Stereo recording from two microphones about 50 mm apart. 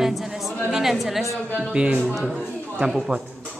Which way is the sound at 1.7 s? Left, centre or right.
Right.